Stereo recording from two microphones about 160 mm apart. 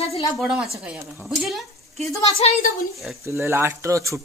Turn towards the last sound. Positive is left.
turn(degrees=-20)  # may be behind; listen again after turning